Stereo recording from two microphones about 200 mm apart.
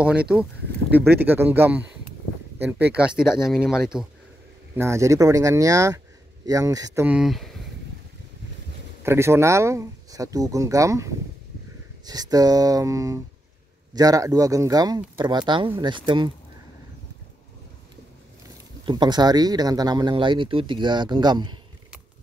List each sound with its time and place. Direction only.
0.0 s speech: 5° right (ahead or behind)
4.7 s speech: 15° right (ahead or behind)
7.1 s speech: centre (ahead or behind)
9.0 s speech: 10° right (ahead or behind)
18.9 s speech: 20° right (ahead or behind)